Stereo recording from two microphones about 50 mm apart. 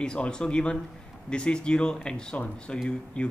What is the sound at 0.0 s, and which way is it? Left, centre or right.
A man's voice, centre.